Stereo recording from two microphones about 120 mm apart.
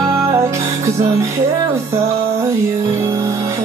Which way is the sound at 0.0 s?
25° right (ahead or behind).